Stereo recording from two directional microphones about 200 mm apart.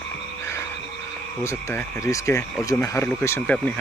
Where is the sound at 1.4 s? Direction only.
15° left (ahead or behind).